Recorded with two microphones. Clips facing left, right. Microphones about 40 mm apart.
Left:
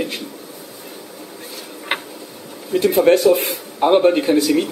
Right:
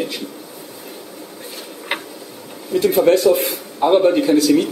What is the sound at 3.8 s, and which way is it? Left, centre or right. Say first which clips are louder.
Speech: even; centre.